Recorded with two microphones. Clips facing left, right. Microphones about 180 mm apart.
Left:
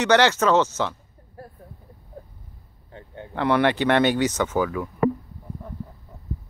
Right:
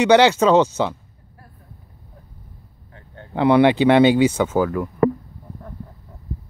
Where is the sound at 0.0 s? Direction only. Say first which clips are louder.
Right 5 dB; 15° right (ahead or behind).